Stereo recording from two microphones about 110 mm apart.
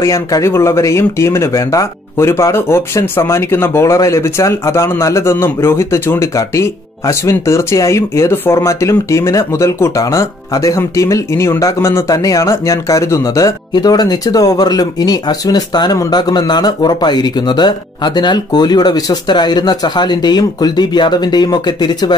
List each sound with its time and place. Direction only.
0.0 s speech: 30° left (ahead or behind)